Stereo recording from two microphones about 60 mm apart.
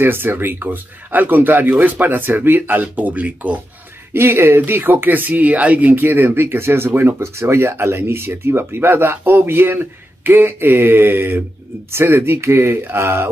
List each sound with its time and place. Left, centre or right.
0.0 s speech: right
4.1 s speech: right